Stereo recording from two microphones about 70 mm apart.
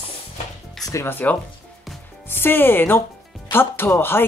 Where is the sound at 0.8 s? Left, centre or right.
Left.